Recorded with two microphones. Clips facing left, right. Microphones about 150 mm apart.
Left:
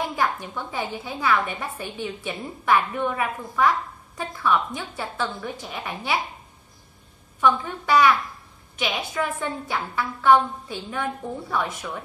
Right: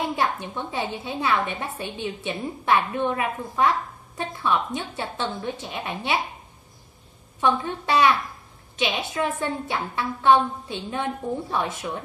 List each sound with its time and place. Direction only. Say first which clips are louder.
0.1 s a woman's voice: even; 25° right (ahead or behind)
7.3 s a woman's voice: left 1 dB; 25° right (ahead or behind)